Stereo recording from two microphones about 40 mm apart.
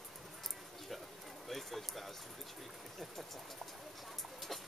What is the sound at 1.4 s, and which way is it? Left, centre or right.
Speech, centre.